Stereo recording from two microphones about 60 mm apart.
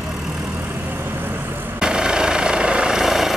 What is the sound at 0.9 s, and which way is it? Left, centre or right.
Vehicle, right.